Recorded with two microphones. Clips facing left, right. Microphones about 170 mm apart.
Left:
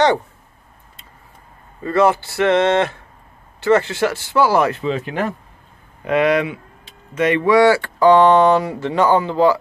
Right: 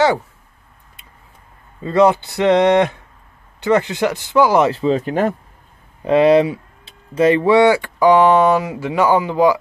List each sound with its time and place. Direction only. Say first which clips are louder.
1.8 s speech: right 2 dB; 20° right (ahead or behind)